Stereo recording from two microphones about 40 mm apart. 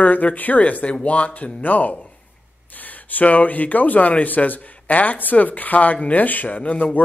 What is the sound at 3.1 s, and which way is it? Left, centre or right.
A man's voice, left.